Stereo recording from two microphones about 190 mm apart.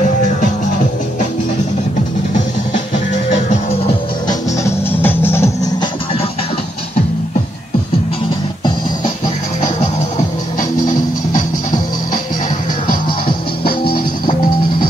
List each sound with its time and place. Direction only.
4.3 s music: 10° left (ahead or behind)
13.7 s music: 55° left (ahead or behind)